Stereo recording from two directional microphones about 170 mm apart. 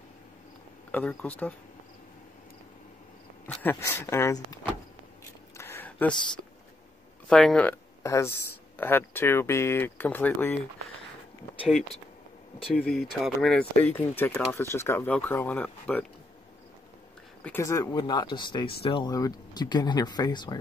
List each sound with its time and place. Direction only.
0.9 s speech: 10° left (ahead or behind)
3.4 s speech: 10° left (ahead or behind)
5.6 s a sound: 10° left (ahead or behind)
7.2 s speech: 5° left (ahead or behind)
8.0 s speech: 15° left (ahead or behind)
12.7 s speech: centre (ahead or behind)
17.4 s speech: 15° left (ahead or behind)